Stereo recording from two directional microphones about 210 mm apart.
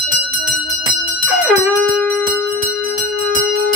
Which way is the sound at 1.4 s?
Centre (ahead or behind).